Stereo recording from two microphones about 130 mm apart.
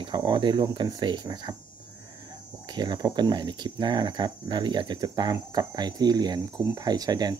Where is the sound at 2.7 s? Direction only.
35° right (ahead or behind).